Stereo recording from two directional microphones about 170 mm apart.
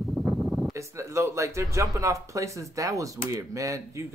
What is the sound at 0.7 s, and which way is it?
Speech, 15° right (ahead or behind).